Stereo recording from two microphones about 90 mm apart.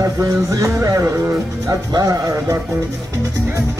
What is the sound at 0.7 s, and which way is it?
Speech, 40° right (ahead or behind).